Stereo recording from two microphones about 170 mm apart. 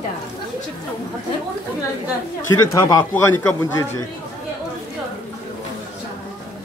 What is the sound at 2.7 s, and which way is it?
Speech, 20° left (ahead or behind).